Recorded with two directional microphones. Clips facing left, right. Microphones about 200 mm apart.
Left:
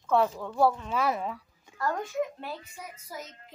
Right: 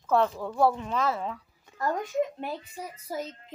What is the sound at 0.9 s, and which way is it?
Speech, 10° left (ahead or behind).